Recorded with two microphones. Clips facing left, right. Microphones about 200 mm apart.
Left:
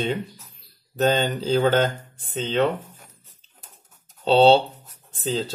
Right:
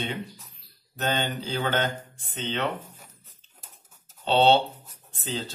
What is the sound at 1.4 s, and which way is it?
Speech, 40° left (ahead or behind).